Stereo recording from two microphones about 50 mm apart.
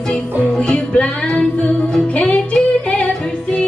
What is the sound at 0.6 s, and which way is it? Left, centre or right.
Music, left.